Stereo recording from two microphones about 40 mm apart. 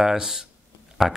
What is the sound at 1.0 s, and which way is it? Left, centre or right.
Speech, centre.